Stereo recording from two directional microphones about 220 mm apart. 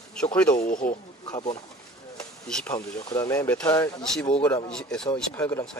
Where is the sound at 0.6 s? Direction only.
40° left (ahead or behind).